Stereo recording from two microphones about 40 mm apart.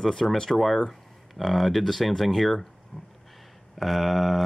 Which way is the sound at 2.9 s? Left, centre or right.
Left.